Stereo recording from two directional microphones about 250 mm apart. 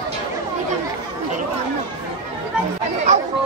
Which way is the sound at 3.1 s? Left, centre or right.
Right.